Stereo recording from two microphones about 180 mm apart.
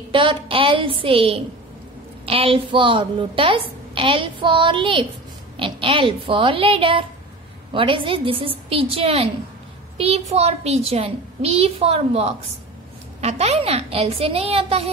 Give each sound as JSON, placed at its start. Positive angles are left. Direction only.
{"t": 0.1, "sound": "a woman's voice", "side_deg": -30}